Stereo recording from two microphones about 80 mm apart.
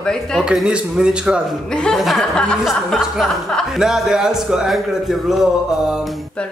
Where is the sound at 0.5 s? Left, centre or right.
Centre.